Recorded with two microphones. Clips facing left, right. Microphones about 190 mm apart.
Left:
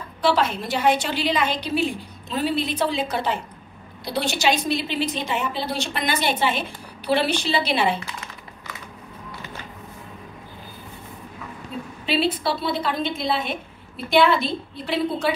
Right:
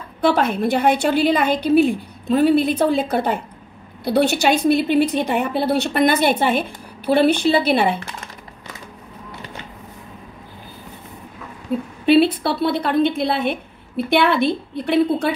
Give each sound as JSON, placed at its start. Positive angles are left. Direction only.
{"t": 0.2, "sound": "a woman's voice", "side_deg": -55}
{"t": 12.1, "sound": "a woman's voice", "side_deg": -60}